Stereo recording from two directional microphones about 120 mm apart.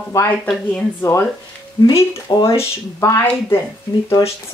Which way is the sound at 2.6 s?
25° left (ahead or behind).